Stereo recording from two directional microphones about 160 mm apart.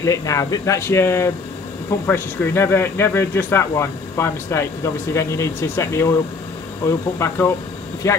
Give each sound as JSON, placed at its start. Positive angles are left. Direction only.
{"t": 0.0, "sound": "speech", "side_deg": 20}